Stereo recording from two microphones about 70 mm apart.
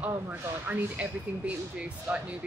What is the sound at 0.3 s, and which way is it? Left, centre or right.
Speech, right.